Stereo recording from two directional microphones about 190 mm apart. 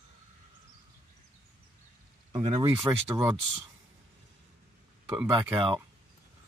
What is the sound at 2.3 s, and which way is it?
Speech, 25° right (ahead or behind).